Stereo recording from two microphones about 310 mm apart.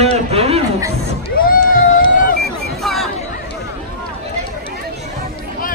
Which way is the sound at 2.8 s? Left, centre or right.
Centre.